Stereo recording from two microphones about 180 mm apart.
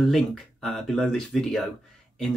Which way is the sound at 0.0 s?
Centre (ahead or behind).